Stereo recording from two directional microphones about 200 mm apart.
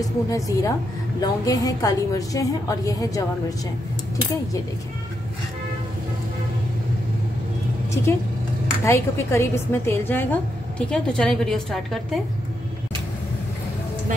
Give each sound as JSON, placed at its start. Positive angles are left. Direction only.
{"t": 0.0, "sound": "a woman's voice", "side_deg": 15}
{"t": 7.9, "sound": "a woman's voice", "side_deg": 15}